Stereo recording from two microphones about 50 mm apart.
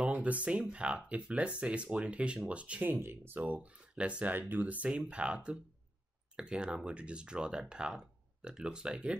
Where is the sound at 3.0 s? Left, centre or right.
Right.